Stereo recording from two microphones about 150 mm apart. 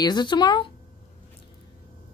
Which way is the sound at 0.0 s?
30° left (ahead or behind).